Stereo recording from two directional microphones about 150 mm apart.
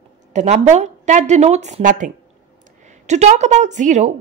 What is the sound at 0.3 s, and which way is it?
A woman's voice, 50° right (ahead or behind).